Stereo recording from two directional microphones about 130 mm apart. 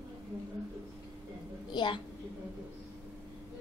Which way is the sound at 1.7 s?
40° left (ahead or behind).